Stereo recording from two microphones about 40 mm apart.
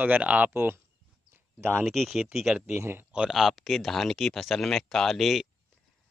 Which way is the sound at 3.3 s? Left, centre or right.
Centre.